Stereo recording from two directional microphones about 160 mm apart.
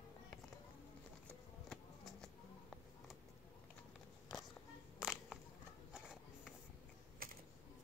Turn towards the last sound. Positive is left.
turn(degrees=-65)  # may be behind; listen again after turning